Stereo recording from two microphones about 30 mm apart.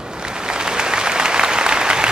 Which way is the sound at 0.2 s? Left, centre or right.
Right.